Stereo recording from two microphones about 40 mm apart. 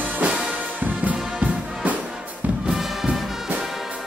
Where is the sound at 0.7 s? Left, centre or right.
Right.